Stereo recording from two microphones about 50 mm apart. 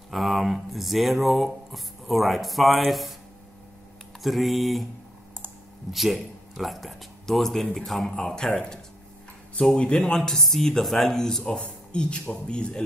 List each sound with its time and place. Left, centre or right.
0.1 s speech: centre
4.2 s speech: centre
5.9 s speech: centre; by 9.9 s left
10.0 s speech: centre